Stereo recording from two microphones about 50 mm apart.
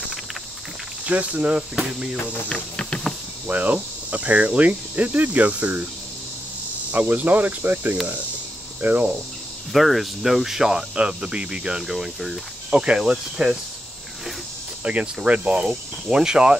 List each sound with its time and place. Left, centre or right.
1.0 s speech: right
1.8 s speech: centre
2.1 s music: left
2.5 s music: centre
3.4 s speech: right
6.9 s speech: right
9.7 s speech: centre
11.0 s speech: right
11.9 s speech: centre
12.7 s speech: centre
14.8 s speech: right